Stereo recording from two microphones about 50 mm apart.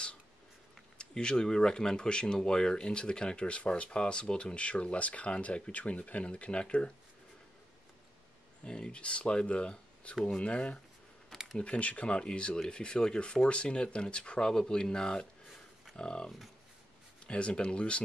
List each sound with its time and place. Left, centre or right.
0.9 s speech: centre
8.6 s speech: centre
17.3 s speech: left